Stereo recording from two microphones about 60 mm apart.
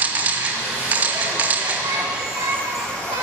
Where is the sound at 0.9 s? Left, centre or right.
Right.